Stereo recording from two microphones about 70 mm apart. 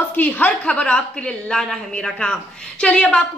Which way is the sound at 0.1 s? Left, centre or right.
Left.